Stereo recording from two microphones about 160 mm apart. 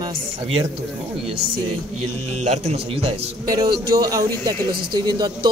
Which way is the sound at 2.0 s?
45° right (ahead or behind).